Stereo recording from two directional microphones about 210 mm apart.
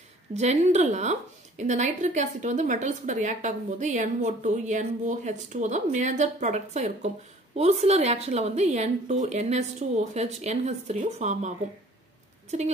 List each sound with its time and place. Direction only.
0.3 s a woman's voice: 35° right (ahead or behind)